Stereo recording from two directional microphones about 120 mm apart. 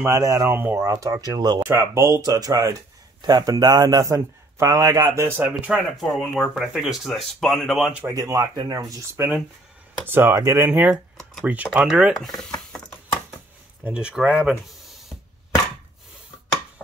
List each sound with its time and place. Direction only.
0.0 s speech: 25° right (ahead or behind)
1.6 s speech: 20° right (ahead or behind)
5.4 s speech: 10° right (ahead or behind)
5.9 s speech: centre (ahead or behind)
8.1 s speech: 30° right (ahead or behind)
10.0 s speech: 15° right (ahead or behind)
10.7 s speech: 10° right (ahead or behind)
13.8 s speech: 10° right (ahead or behind)